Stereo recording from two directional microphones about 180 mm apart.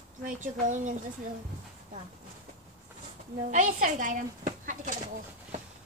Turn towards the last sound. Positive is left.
turn(degrees=-45)  # may be behind; listen again after turning